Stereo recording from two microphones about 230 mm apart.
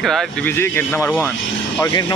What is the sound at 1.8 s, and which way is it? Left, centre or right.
Speech, centre.